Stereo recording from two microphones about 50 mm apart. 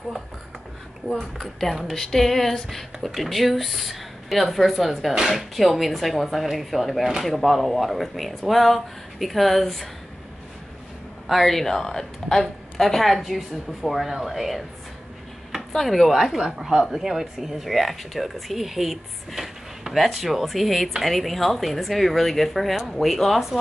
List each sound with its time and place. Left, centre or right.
1.1 s speech: centre
11.2 s speech: centre
15.7 s speech: centre